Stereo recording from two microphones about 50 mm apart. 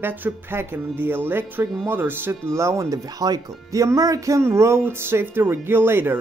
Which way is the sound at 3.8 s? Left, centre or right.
Right.